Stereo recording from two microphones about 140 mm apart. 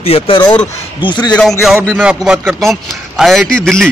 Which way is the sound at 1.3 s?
5° left (ahead or behind).